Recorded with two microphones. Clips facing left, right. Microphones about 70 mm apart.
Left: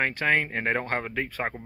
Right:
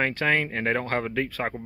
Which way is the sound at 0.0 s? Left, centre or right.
Centre.